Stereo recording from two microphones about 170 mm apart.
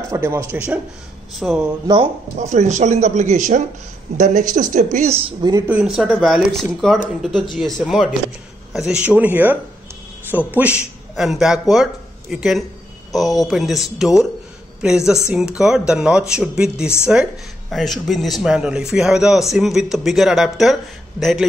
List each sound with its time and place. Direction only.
0.1 s speech: 15° right (ahead or behind)
1.3 s speech: centre (ahead or behind)
2.3 s speech: 45° right (ahead or behind)
5.7 s speech: 5° right (ahead or behind)